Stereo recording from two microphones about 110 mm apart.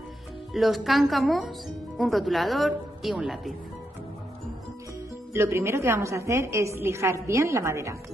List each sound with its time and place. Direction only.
0.5 s a woman's voice: centre (ahead or behind)
5.3 s a woman's voice: 25° right (ahead or behind)